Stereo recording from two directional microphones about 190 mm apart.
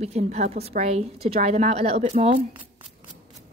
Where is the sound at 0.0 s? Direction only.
35° right (ahead or behind).